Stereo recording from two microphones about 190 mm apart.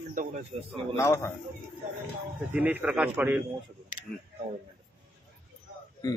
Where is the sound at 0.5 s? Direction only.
30° right (ahead or behind).